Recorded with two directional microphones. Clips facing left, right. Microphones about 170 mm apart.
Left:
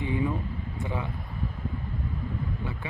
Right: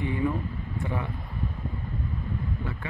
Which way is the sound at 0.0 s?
15° left (ahead or behind).